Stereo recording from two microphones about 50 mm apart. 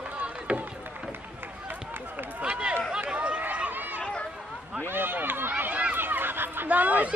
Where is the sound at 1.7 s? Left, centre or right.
Right.